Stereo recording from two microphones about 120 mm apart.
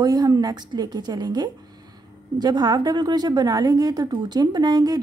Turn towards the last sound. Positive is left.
turn(degrees=-35)  # may be behind; listen again after turning